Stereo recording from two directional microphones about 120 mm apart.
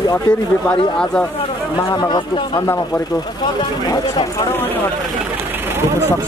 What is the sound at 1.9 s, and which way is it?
Speech, 35° left (ahead or behind).